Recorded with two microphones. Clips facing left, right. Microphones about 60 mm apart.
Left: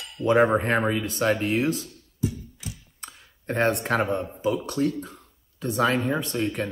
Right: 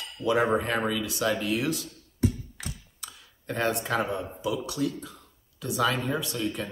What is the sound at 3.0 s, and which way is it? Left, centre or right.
Speech, left.